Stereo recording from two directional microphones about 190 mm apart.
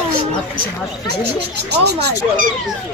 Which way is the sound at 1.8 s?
60° right (ahead or behind).